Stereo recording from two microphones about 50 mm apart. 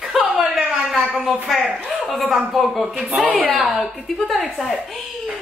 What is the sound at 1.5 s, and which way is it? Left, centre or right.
A woman's voice, centre.